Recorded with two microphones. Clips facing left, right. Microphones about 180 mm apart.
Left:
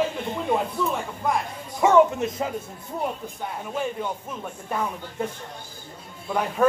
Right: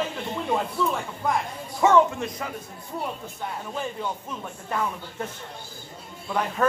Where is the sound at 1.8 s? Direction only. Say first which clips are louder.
Left 2 dB; 20° left (ahead or behind).